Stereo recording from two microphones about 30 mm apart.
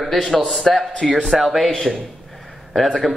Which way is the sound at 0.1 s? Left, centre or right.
Centre.